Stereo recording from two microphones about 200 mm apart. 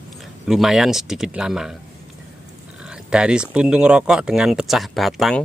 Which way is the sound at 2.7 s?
5° right (ahead or behind).